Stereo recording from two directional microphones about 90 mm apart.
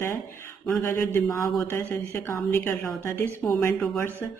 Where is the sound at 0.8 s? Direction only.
30° left (ahead or behind).